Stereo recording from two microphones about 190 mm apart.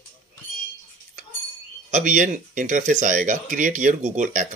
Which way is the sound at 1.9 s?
40° right (ahead or behind).